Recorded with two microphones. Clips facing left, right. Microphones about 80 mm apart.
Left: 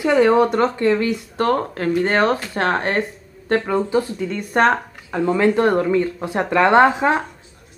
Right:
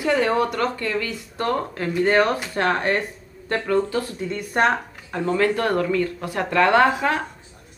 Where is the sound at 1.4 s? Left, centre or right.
Left.